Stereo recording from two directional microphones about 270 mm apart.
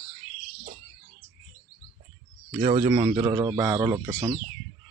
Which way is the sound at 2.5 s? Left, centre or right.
Right.